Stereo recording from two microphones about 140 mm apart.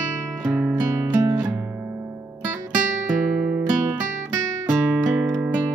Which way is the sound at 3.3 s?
10° right (ahead or behind).